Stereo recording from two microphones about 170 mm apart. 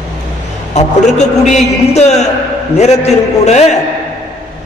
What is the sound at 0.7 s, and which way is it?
A man's voice, 45° left (ahead or behind).